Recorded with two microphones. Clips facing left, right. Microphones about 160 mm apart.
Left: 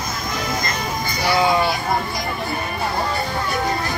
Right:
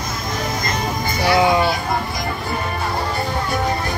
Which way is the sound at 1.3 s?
20° right (ahead or behind).